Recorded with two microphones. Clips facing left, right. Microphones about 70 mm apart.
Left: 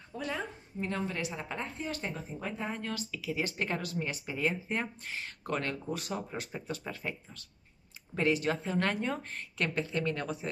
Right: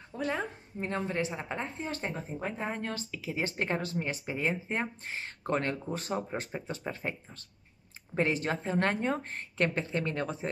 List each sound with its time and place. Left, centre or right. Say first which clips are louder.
0.2 s a woman's voice: right 4 dB; right